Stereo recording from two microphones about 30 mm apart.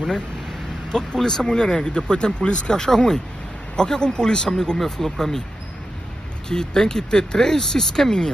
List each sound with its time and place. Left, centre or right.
0.9 s speech: left
2.7 s speech: left
6.5 s speech: left